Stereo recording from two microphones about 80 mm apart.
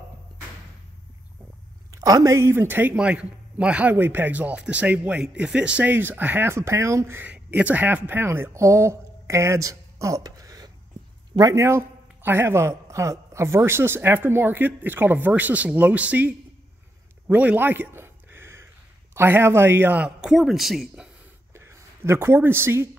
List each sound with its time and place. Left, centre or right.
1.9 s a sound: right
2.2 s a man's voice: right
3.0 s a man's voice: centre; by 7.2 s right
7.2 s speech: centre; by 10.7 s right
11.5 s a man's voice: right
17.3 s a sound: right
19.1 s a man's voice: right
20.2 s speech: centre
21.5 s speech: right